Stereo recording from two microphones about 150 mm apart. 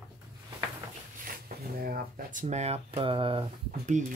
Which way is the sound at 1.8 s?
75° right (ahead or behind).